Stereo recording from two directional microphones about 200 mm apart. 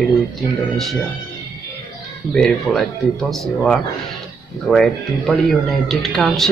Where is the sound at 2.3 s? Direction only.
5° left (ahead or behind).